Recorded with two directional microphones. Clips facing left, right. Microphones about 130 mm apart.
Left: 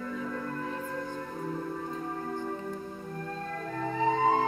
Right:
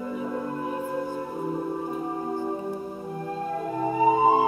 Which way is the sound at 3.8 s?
15° right (ahead or behind).